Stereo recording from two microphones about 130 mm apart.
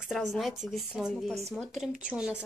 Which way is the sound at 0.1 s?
5° right (ahead or behind).